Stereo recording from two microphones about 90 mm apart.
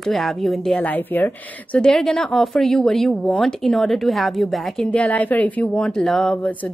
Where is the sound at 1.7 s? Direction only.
5° left (ahead or behind).